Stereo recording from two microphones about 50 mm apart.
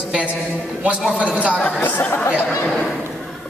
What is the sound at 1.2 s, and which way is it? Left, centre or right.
Speech, right.